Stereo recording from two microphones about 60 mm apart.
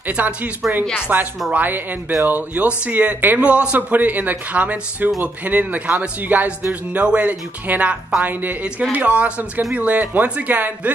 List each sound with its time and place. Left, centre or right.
0.1 s a woman's voice: right